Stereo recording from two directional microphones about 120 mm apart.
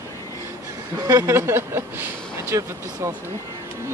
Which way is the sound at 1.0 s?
25° right (ahead or behind).